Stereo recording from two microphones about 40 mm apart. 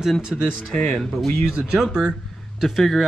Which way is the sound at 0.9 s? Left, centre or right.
Centre.